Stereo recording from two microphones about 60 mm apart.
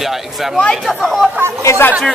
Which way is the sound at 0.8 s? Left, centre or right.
Centre.